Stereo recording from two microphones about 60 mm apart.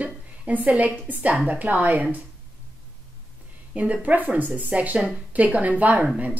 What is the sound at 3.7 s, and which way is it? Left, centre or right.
A woman's voice, right.